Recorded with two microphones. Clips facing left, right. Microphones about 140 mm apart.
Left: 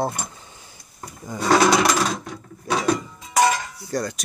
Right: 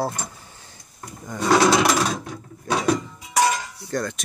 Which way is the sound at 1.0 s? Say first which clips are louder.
Even; 5° left (ahead or behind).